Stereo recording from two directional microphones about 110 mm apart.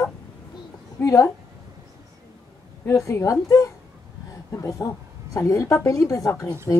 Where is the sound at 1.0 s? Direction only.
30° left (ahead or behind).